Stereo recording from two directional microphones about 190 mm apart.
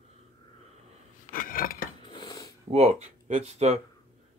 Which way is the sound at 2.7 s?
35° right (ahead or behind).